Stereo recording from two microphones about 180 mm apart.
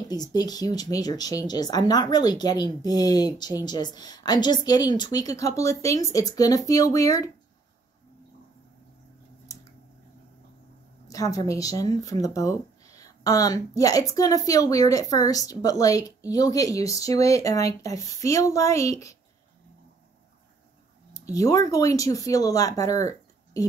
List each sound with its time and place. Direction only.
0.1 s speech: 20° left (ahead or behind)
11.1 s speech: 20° left (ahead or behind)
21.1 s speech: 20° left (ahead or behind)